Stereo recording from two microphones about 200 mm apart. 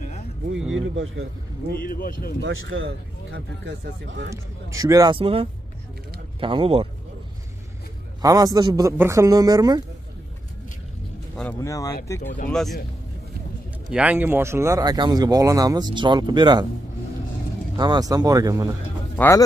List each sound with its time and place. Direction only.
0.6 s speech: 5° right (ahead or behind)
0.9 s a man's voice: 75° right (ahead or behind)
1.8 s speech: 45° left (ahead or behind)
2.4 s speech: 80° right; by 4.4 s 60° right (ahead or behind)
4.6 s a man's voice: 15° right (ahead or behind)
8.2 s a man's voice: 20° right (ahead or behind)
11.6 s speech: 15° left (ahead or behind)
12.4 s speech: centre (ahead or behind)
13.8 s speech: 5° right (ahead or behind); by 16.6 s 20° right (ahead or behind)
17.7 s speech: 20° right (ahead or behind)
19.1 s speech: 15° left (ahead or behind)